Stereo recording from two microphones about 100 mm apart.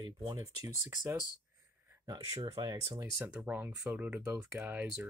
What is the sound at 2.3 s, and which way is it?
Speech, 65° right (ahead or behind).